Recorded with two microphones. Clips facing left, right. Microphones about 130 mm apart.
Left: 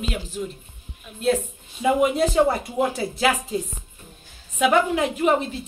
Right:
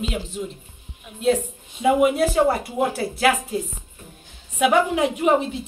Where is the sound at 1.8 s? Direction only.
5° right (ahead or behind).